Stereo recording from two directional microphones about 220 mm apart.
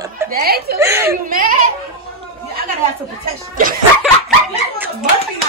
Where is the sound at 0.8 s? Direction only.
10° right (ahead or behind).